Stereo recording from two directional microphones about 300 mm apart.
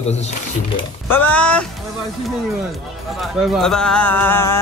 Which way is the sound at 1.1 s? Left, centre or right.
Centre.